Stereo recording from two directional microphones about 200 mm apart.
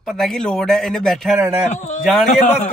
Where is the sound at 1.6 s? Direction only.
35° left (ahead or behind).